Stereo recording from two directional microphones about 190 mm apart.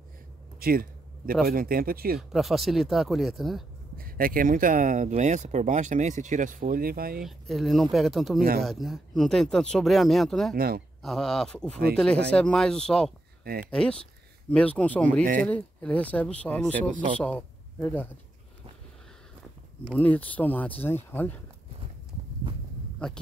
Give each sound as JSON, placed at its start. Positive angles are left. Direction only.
{"t": 0.6, "sound": "a sound", "side_deg": -50}
{"t": 1.5, "sound": "speech", "side_deg": -50}
{"t": 2.1, "sound": "speech", "side_deg": 0}
{"t": 3.9, "sound": "speech", "side_deg": -50}
{"t": 7.2, "sound": "speech", "side_deg": 0}
{"t": 10.5, "sound": "speech", "side_deg": -55}
{"t": 11.0, "sound": "speech", "side_deg": 0}
{"t": 13.4, "sound": "a sound", "side_deg": -50}
{"t": 13.7, "sound": "speech", "side_deg": 5}
{"t": 20.0, "sound": "speech", "side_deg": 10}